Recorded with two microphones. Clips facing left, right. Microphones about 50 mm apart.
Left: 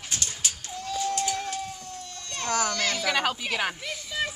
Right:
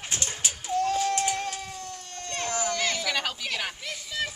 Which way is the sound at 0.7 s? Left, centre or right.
Right.